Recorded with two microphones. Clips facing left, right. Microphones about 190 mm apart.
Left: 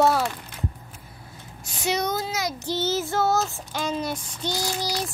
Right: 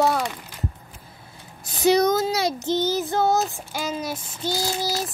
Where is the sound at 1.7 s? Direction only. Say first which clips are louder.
Right 8 dB; 35° right (ahead or behind).